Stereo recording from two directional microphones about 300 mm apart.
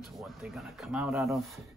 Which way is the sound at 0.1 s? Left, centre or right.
Centre.